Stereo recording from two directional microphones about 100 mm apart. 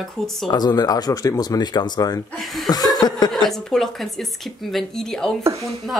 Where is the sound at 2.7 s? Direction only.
40° left (ahead or behind).